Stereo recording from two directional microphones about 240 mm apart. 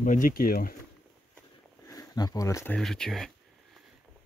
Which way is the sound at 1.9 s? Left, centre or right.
Centre.